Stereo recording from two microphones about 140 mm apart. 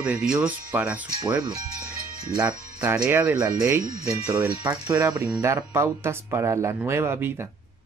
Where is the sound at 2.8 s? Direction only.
10° right (ahead or behind).